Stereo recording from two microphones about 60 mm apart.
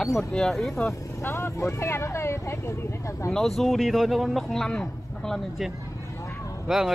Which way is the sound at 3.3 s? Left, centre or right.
Centre.